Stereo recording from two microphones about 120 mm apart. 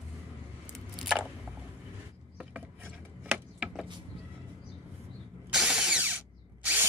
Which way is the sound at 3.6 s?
5° right (ahead or behind).